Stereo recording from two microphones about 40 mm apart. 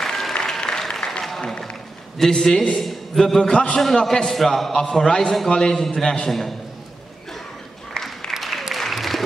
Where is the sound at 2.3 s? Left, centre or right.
Centre.